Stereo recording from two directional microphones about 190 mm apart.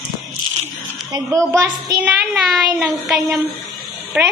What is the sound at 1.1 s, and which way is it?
A woman's voice, 15° right (ahead or behind).